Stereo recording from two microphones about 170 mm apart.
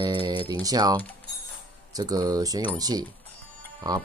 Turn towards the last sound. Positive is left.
turn(degrees=-25)  # may be behind; listen again after turning